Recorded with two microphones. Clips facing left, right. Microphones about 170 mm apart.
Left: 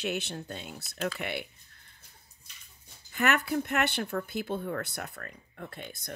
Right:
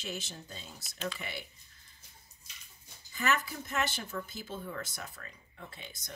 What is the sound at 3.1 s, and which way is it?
Speech, 65° left (ahead or behind).